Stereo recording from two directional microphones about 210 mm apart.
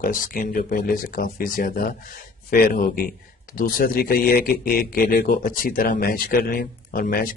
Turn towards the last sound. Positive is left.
turn(degrees=45)  # may be behind; listen again after turning